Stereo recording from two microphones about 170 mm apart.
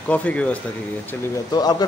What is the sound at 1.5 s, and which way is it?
Speech, 25° left (ahead or behind).